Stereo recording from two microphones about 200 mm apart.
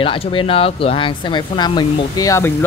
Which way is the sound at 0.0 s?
25° left (ahead or behind).